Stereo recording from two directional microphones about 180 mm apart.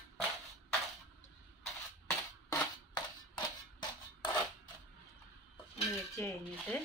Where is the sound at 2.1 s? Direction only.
15° left (ahead or behind).